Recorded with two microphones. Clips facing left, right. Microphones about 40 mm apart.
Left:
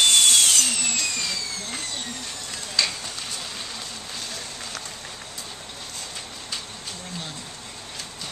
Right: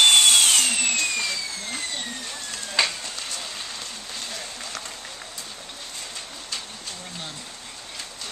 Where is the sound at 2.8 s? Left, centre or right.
Right.